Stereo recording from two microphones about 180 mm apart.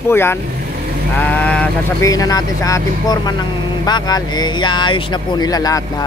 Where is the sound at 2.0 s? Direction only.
20° left (ahead or behind).